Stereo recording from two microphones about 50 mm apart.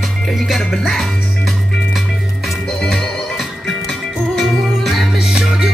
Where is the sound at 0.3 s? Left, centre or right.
Centre.